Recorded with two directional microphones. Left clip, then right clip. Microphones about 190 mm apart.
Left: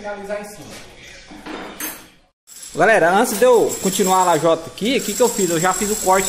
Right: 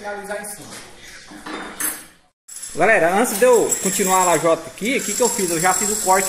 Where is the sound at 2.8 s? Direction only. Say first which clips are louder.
Left 2 dB; 10° left (ahead or behind).